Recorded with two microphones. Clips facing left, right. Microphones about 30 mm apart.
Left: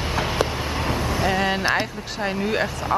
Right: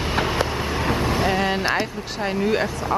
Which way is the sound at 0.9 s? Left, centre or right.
Right.